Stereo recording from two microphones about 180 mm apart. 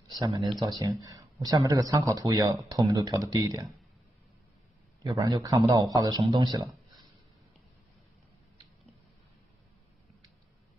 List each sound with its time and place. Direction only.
0.4 s speech: centre (ahead or behind)
0.7 s speech: 20° right (ahead or behind)
5.0 s speech: 20° right (ahead or behind)